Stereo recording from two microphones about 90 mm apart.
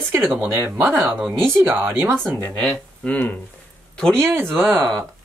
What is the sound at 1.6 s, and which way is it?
Speech, 25° right (ahead or behind).